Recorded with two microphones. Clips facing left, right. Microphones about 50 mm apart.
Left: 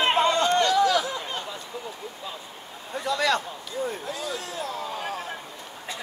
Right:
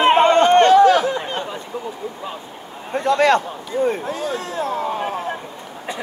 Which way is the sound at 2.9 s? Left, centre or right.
Right.